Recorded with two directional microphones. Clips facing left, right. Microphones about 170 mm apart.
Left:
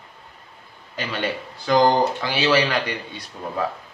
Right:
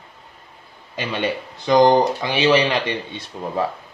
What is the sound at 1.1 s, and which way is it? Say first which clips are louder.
Speech: right 3 dB; 20° right (ahead or behind).